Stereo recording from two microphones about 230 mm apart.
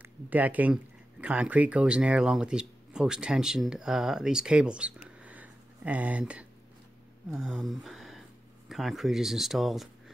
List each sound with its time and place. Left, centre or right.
0.0 s speech: centre